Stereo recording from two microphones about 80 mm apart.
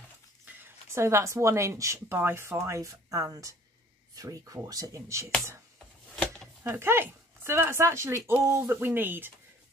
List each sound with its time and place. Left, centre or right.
0.5 s speech: right
6.7 s speech: right